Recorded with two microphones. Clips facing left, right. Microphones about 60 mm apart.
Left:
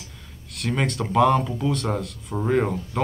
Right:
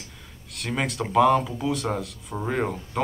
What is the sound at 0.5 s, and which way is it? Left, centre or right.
Speech, centre.